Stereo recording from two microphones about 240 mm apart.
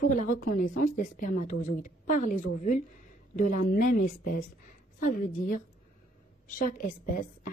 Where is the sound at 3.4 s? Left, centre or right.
Left.